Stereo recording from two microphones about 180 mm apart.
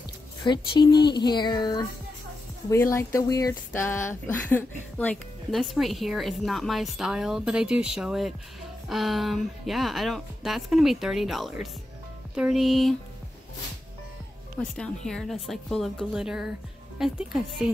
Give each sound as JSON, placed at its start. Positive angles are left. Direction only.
{"t": 0.4, "sound": "a woman's voice", "side_deg": 25}
{"t": 14.6, "sound": "a woman's voice", "side_deg": 5}